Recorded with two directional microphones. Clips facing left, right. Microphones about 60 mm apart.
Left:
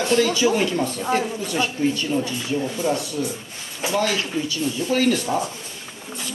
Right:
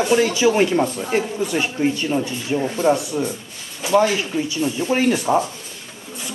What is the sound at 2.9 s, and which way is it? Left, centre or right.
Speech, right.